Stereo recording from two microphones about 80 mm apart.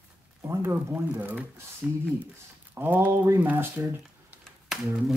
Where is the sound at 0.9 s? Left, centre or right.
Right.